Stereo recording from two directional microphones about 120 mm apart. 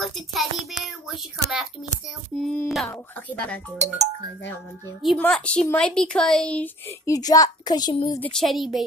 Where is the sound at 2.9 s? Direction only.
15° left (ahead or behind).